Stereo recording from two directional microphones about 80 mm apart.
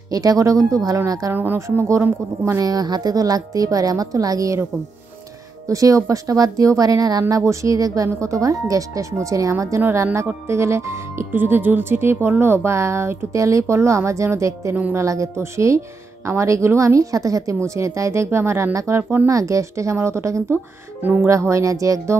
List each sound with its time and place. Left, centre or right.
0.1 s speech: right
1.3 s speech: right
2.4 s speech: right
5.7 s speech: right
21.0 s speech: centre
21.3 s speech: right